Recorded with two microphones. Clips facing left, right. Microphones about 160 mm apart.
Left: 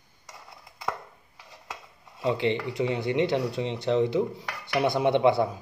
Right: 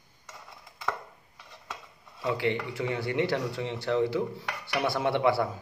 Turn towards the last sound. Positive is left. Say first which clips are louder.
# left 4 dB
turn(degrees=20)  # may be behind; listen again after turning